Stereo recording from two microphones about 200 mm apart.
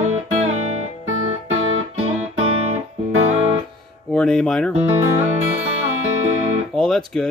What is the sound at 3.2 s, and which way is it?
Music, 30° right (ahead or behind).